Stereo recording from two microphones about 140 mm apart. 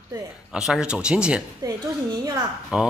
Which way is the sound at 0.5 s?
5° right (ahead or behind).